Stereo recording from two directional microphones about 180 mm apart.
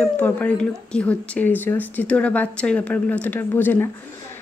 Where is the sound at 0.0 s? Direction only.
10° left (ahead or behind).